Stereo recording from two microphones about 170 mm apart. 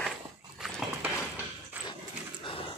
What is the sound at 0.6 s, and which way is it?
Horse, 5° right (ahead or behind).